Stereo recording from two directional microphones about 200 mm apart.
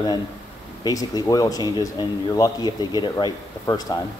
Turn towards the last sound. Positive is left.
turn(degrees=20)  # may be behind; listen again after turning